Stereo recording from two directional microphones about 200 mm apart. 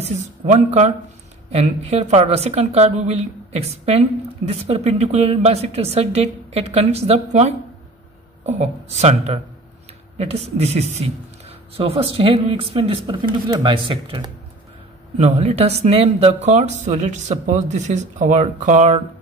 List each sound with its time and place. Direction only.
0.0 s a woman's voice: 35° right (ahead or behind)